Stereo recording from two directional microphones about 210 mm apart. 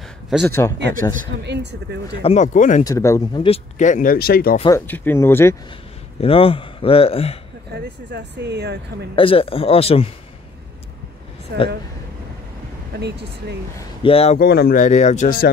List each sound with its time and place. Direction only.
0.5 s speech: 10° left (ahead or behind)
1.4 s speech: 55° right (ahead or behind)
2.2 s speech: 35° left (ahead or behind)
2.8 s speech: 15° left (ahead or behind); by 4.6 s 45° left (ahead or behind)
4.7 s speech: 10° left (ahead or behind)
6.2 s speech: 25° left (ahead or behind)
7.7 s speech: 55° right (ahead or behind)
9.1 s speech: 25° left (ahead or behind)
11.5 s speech: 50° right (ahead or behind)
13.0 s speech: 55° right (ahead or behind)
14.0 s speech: 30° left (ahead or behind)
14.4 s speech: 45° left (ahead or behind)